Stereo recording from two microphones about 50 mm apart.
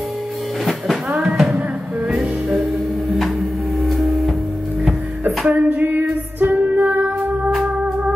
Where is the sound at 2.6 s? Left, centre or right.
Centre.